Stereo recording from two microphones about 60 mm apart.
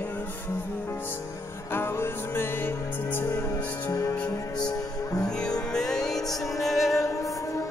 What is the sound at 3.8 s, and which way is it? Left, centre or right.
Music, left.